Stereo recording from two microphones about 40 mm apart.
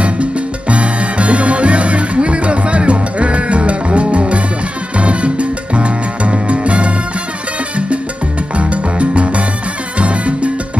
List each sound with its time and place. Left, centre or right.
0.0 s salsa music: right
4.9 s music: right
8.5 s music: right
9.9 s salsa music: right